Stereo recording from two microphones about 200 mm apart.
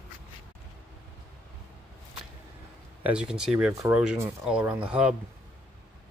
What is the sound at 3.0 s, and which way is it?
Speech, 5° right (ahead or behind).